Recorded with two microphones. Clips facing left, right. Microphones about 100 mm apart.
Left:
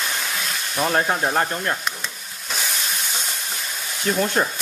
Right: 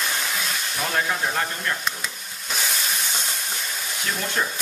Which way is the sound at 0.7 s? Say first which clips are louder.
Left 5 dB; 40° left (ahead or behind).